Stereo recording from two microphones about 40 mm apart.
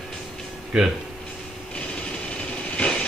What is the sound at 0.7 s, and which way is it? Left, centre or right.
Speech, right.